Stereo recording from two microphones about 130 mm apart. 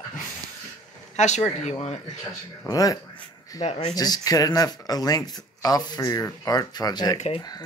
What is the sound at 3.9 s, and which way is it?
Speech, 30° left (ahead or behind).